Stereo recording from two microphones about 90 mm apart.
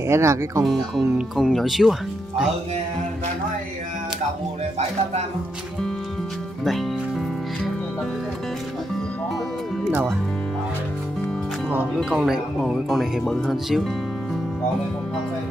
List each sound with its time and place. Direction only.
0.0 s speech: 35° right (ahead or behind)
1.1 s speech: centre (ahead or behind)
12.0 s speech: 5° right (ahead or behind)